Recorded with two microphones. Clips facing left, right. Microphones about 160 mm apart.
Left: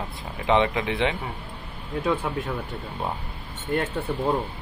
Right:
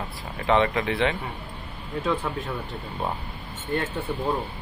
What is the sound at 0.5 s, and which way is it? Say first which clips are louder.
Speech: even; 15° left (ahead or behind).